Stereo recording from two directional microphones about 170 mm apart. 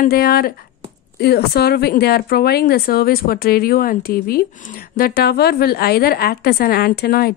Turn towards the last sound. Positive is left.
turn(degrees=65)  # may be behind; listen again after turning